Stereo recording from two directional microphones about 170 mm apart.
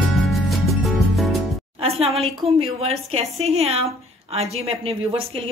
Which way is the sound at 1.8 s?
35° right (ahead or behind).